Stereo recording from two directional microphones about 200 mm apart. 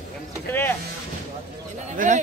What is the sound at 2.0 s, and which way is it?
Speech, 40° right (ahead or behind).